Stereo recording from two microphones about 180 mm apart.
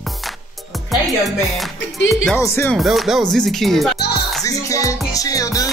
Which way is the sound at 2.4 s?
15° left (ahead or behind).